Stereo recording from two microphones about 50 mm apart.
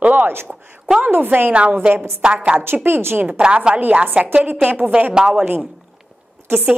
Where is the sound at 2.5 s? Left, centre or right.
Right.